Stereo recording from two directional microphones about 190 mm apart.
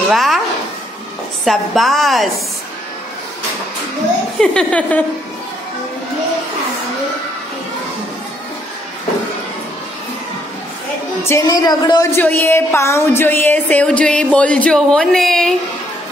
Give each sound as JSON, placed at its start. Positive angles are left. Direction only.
{"t": 0.1, "sound": "a woman's voice", "side_deg": 0}
{"t": 1.4, "sound": "a woman's voice", "side_deg": 0}
{"t": 4.4, "sound": "speech", "side_deg": 5}
{"t": 11.2, "sound": "speech", "side_deg": 15}
{"t": 12.2, "sound": "speech", "side_deg": 10}